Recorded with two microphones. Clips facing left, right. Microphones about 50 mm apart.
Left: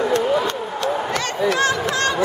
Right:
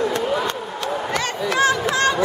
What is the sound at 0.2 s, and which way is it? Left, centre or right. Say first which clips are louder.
Run: left 2 dB; centre.